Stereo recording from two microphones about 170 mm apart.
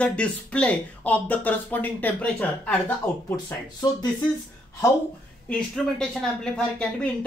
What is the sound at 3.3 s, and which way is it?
Speech, 20° left (ahead or behind).